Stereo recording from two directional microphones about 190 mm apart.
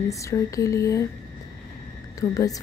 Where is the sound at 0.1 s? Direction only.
15° left (ahead or behind).